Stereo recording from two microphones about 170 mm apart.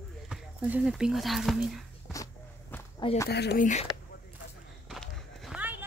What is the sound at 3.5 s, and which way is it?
Speech, 45° left (ahead or behind).